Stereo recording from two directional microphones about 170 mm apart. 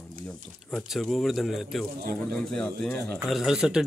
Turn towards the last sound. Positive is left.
turn(degrees=-5)  # may be behind; listen again after turning